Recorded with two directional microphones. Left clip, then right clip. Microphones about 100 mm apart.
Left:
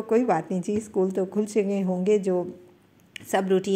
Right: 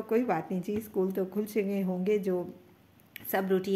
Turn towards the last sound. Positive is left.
turn(degrees=25)  # may be behind; listen again after turning